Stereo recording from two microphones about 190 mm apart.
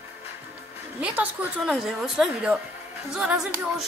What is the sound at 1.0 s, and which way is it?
A woman's voice, 10° right (ahead or behind).